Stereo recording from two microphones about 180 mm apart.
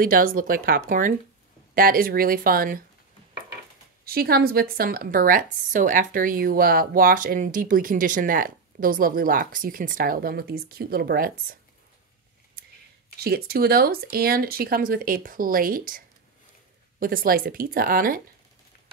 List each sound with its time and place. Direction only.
0.0 s a woman's voice: 50° right (ahead or behind)
4.0 s a woman's voice: 55° right (ahead or behind)
12.6 s a sound: 60° right (ahead or behind)
13.2 s speech: 60° right (ahead or behind)
17.0 s a woman's voice: 50° right (ahead or behind)